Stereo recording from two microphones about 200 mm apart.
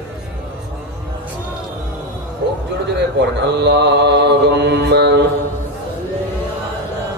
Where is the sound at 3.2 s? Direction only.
60° right (ahead or behind).